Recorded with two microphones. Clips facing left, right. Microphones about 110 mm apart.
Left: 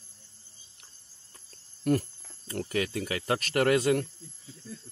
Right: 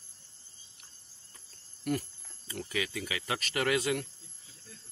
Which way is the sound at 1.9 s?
45° left (ahead or behind).